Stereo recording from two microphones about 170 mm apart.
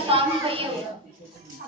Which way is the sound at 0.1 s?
35° right (ahead or behind).